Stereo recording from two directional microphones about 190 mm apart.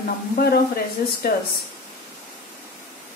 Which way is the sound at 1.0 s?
55° left (ahead or behind).